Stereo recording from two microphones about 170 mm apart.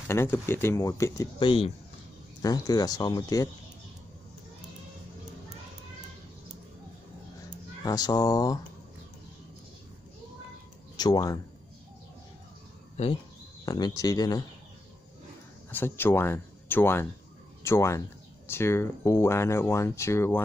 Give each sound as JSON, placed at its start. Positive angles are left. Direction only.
{"t": 0.1, "sound": "speech", "side_deg": 15}
{"t": 1.4, "sound": "speech", "side_deg": 30}
{"t": 7.8, "sound": "speech", "side_deg": 20}
{"t": 11.0, "sound": "speech", "side_deg": 25}
{"t": 12.9, "sound": "speech", "side_deg": 35}
{"t": 13.7, "sound": "speech", "side_deg": 25}
{"t": 15.7, "sound": "speech", "side_deg": 15}